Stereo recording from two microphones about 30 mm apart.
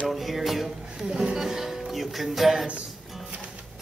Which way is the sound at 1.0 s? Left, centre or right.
Right.